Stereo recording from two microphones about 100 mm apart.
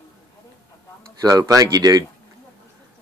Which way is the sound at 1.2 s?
35° right (ahead or behind).